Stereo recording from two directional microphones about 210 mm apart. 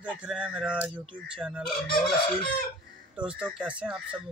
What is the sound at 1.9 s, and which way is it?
Chicken, 50° left (ahead or behind).